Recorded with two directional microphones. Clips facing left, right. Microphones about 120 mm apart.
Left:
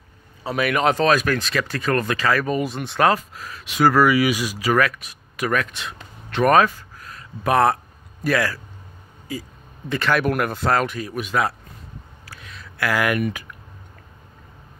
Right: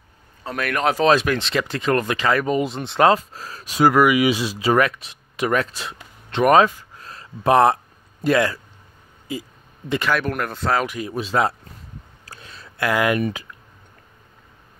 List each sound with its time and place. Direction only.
0.4 s speech: 5° left (ahead or behind)
1.2 s speech: 20° right (ahead or behind)
3.8 s speech: 15° right (ahead or behind)
6.3 s speech: 20° right (ahead or behind)
9.3 s a sound: 20° right (ahead or behind)
10.1 s speech: 5° left (ahead or behind)
10.9 s speech: 20° right (ahead or behind)
12.3 s a sound: 30° right (ahead or behind)